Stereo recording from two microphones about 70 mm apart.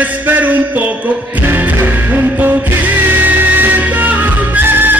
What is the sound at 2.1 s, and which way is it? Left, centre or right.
Music, right.